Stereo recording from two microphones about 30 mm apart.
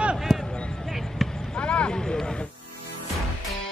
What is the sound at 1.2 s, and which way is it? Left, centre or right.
Basketball bounce, centre.